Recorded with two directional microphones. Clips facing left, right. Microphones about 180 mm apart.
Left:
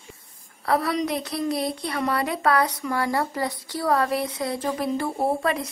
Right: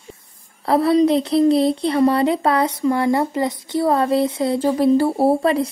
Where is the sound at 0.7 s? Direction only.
30° right (ahead or behind).